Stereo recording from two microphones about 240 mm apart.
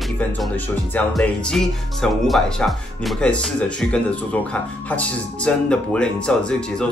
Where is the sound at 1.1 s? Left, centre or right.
Centre.